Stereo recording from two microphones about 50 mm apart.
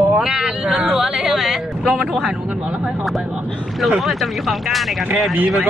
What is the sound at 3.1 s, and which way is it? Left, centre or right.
Speech, centre.